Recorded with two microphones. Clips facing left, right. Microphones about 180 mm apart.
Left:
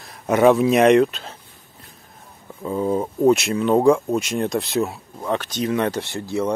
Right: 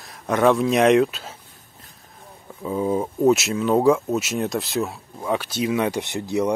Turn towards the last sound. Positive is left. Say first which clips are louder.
# right 1 dB
turn(degrees=-20)  # may be behind; listen again after turning